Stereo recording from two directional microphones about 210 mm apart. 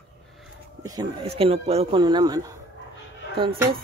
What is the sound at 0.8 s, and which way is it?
Speech, 20° right (ahead or behind).